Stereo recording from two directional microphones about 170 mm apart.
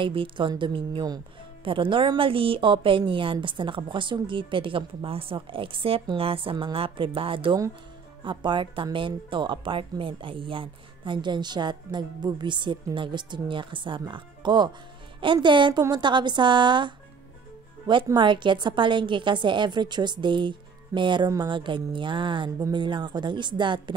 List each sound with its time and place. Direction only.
0.0 s a woman's voice: 30° right (ahead or behind)
18.0 s a woman's voice: 25° right (ahead or behind)